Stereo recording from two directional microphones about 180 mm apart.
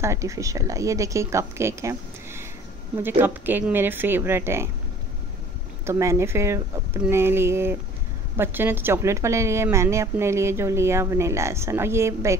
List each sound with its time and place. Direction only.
0.0 s a woman's voice: 15° right (ahead or behind)
5.9 s a woman's voice: 15° right (ahead or behind)